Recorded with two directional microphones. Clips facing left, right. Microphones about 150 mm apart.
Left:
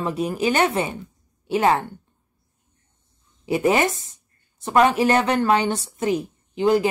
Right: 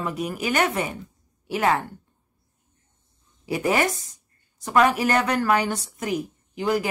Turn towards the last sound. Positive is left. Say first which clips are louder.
# left 6 dB
turn(degrees=25)  # may be behind; listen again after turning